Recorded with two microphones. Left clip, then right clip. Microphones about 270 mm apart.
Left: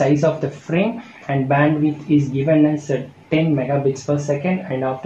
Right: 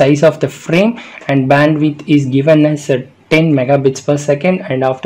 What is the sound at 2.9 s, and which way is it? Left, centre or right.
Speech, right.